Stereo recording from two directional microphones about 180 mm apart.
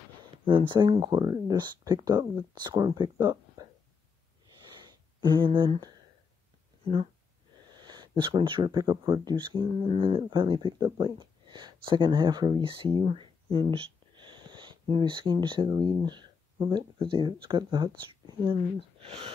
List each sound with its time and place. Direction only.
0.5 s speech: 25° right (ahead or behind)
4.6 s a sound: 25° right (ahead or behind)
7.7 s speech: 25° right (ahead or behind)